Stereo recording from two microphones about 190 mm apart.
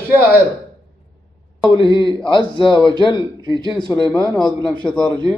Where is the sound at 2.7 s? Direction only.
20° right (ahead or behind).